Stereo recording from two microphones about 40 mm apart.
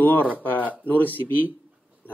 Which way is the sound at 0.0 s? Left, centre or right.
Left.